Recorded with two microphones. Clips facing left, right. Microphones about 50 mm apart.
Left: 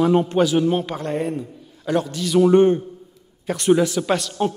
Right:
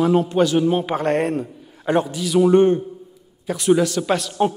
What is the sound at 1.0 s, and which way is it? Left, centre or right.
Speech, right.